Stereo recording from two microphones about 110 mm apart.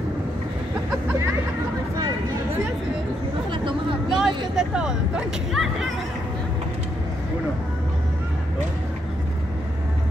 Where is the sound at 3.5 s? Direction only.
50° right (ahead or behind).